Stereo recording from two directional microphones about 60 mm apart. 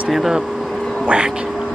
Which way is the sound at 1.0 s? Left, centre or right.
Centre.